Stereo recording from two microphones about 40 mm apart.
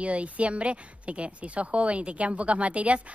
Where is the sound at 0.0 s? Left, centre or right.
Right.